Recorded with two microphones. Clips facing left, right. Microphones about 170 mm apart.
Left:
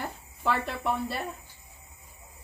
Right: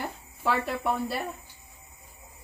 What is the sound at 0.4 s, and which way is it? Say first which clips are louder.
Speech: right 1 dB; 5° right (ahead or behind).